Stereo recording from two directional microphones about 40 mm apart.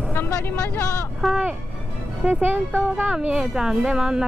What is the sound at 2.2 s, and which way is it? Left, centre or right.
Speech, right.